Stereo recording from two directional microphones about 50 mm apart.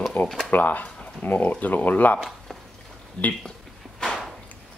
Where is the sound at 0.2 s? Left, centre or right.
Left.